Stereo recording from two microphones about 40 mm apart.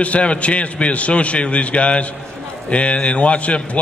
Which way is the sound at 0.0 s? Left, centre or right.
Left.